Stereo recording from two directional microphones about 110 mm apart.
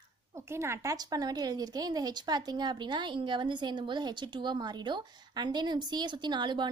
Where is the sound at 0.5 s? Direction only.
25° right (ahead or behind).